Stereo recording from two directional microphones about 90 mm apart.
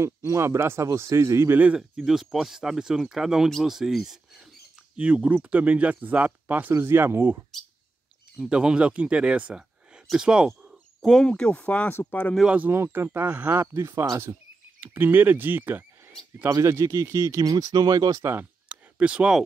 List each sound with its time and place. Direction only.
0.0 s speech: 30° right (ahead or behind)
1.8 s speech: 5° right (ahead or behind); by 7.3 s 25° right (ahead or behind)
8.4 s speech: 10° right (ahead or behind)
10.0 s bird: 10° right (ahead or behind)
11.1 s speech: 5° left (ahead or behind)
12.4 s speech: 20° right (ahead or behind)
12.7 s speech: 30° right (ahead or behind)
14.8 s speech: 25° right (ahead or behind)
16.4 s speech: 30° right (ahead or behind)
18.2 s speech: 25° right (ahead or behind)
18.7 s a sound: 15° right (ahead or behind)